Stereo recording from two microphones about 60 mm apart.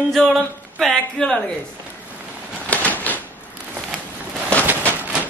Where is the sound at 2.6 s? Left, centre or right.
Left.